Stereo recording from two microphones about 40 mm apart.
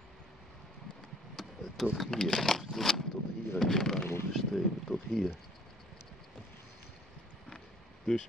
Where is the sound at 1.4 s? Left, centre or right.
Centre.